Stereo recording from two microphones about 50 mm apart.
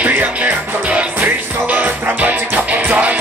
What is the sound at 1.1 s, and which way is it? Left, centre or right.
Music, right.